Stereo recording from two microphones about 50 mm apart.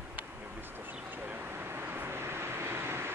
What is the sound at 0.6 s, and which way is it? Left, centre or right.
Vehicle, right.